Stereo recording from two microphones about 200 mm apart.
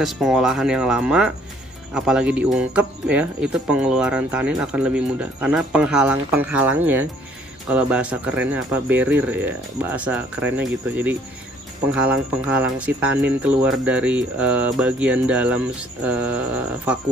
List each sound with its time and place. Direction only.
0.0 s speech: centre (ahead or behind)